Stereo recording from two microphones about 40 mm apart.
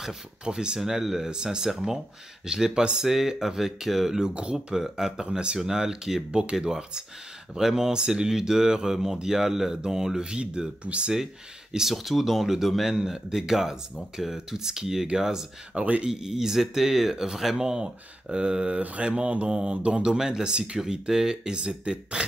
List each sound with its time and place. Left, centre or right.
0.5 s speech: right
0.7 s speech: centre
3.0 s speech: centre
4.2 s speech: right
4.7 s speech: centre
5.2 s speech: right
5.6 s speech: centre
11.9 s speech: centre
15.7 s speech: right
16.1 s speech: centre
20.2 s speech: centre